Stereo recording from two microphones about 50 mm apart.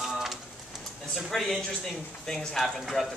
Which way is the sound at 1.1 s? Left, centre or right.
Centre.